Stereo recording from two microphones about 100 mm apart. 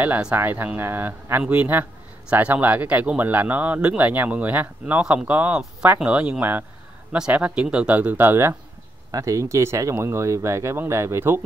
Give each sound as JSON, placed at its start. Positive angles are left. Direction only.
{"t": 0.0, "sound": "speech", "side_deg": -15}
{"t": 9.1, "sound": "speech", "side_deg": -35}